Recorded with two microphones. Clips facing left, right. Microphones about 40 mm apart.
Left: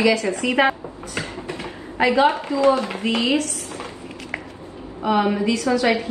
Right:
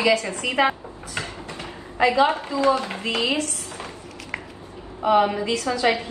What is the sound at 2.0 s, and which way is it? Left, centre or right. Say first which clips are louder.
A woman's voice: left 2 dB; left.